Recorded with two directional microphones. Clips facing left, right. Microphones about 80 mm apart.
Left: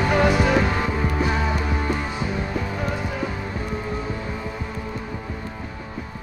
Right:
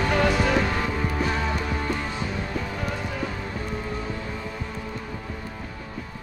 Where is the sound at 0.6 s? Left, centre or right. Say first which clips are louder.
Left 3 dB; left.